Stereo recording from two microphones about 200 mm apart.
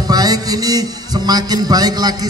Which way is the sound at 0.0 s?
20° right (ahead or behind).